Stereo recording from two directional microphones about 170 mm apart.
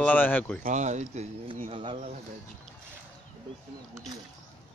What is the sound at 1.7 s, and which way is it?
Speech, 35° right (ahead or behind).